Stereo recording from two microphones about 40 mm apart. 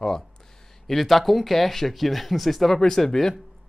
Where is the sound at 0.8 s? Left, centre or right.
Centre.